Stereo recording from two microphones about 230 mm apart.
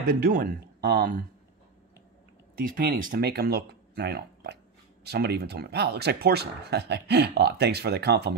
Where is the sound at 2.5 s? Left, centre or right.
Right.